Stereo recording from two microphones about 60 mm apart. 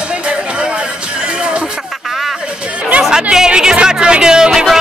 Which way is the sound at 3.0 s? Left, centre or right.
Centre.